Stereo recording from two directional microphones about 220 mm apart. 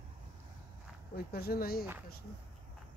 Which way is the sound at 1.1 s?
45° left (ahead or behind).